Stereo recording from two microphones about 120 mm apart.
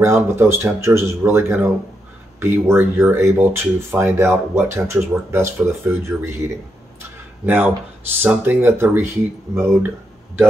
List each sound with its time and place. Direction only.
0.0 s speech: 20° right (ahead or behind)